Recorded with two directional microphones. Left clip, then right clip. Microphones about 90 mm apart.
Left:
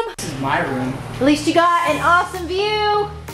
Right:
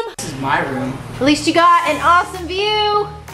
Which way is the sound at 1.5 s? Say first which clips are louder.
Right 5 dB; centre (ahead or behind).